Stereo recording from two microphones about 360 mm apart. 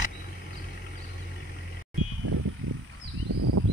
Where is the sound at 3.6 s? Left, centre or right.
Right.